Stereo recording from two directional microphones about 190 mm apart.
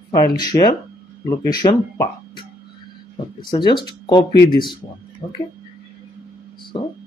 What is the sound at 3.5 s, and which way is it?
Speech, 25° left (ahead or behind).